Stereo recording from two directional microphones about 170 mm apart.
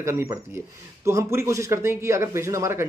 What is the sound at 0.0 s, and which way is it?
Speech, 15° right (ahead or behind).